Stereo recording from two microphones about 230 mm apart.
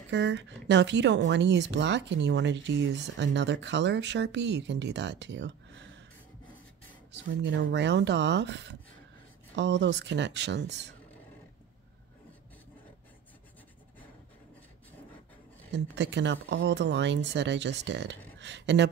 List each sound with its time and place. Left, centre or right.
0.1 s speech: right
7.2 s speech: right
15.9 s speech: right